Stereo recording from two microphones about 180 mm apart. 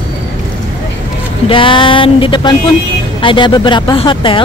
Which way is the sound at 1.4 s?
30° left (ahead or behind).